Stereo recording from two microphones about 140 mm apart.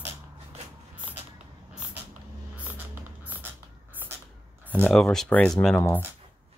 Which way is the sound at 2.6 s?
15° right (ahead or behind).